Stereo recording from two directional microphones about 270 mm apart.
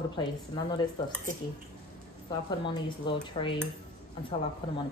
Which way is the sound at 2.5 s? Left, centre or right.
Centre.